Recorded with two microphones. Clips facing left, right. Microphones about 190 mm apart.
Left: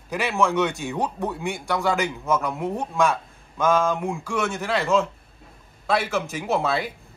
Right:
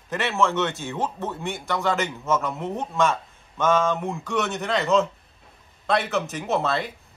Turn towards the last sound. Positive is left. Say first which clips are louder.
# left 1 dB
turn(degrees=0)  # may be behind; listen again after turning